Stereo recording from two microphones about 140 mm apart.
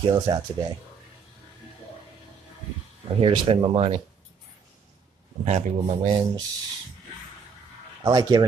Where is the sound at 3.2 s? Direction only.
40° right (ahead or behind).